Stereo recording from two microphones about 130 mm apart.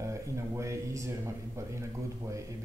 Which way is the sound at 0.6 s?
25° right (ahead or behind).